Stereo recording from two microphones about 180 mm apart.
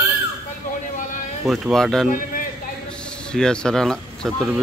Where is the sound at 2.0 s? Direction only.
50° left (ahead or behind).